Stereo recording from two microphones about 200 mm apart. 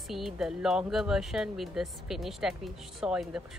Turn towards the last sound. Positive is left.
turn(degrees=-5)  # may be behind; listen again after turning